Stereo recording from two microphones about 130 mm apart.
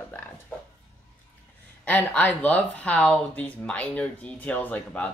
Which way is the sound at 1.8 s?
10° left (ahead or behind).